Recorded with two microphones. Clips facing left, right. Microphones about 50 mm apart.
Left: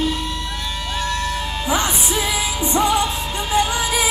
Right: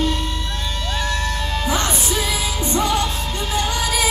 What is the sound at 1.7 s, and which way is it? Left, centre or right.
Music, centre.